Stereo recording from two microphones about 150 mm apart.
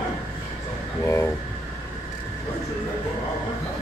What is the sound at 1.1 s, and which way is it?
Speech, 20° left (ahead or behind).